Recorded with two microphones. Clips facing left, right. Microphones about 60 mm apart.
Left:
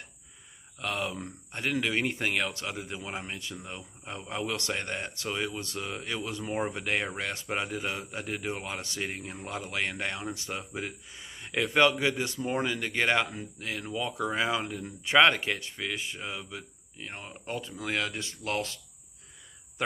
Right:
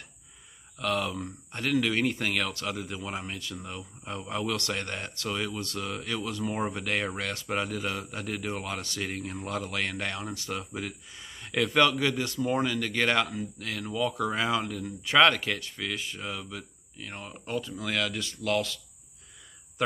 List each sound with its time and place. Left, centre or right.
0.7 s speech: centre